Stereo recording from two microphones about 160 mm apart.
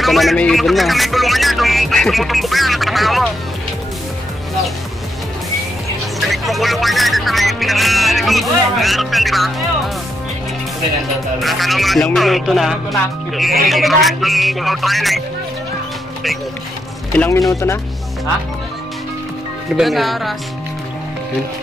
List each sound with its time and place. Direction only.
0.0 s music: centre (ahead or behind)
6.1 s music: centre (ahead or behind)
11.4 s music: centre (ahead or behind)
17.1 s speech: 10° left (ahead or behind)
19.8 s music: centre (ahead or behind)